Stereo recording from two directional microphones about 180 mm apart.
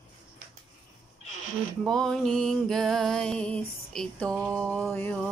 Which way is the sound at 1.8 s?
Centre (ahead or behind).